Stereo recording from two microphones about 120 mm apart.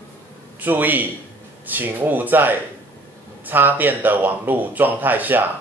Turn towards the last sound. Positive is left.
turn(degrees=-15)  # may be behind; listen again after turning